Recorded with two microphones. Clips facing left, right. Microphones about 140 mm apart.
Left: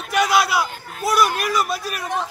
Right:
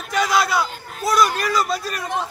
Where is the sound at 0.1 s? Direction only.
10° left (ahead or behind).